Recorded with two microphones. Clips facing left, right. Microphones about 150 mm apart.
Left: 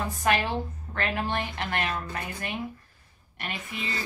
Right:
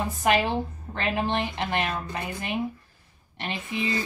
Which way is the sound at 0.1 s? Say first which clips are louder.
Right 3 dB; 20° right (ahead or behind).